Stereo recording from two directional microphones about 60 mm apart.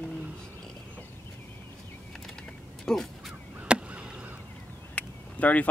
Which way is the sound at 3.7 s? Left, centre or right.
Right.